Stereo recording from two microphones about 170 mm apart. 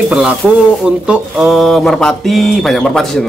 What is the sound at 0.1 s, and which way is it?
Mantra, 5° right (ahead or behind).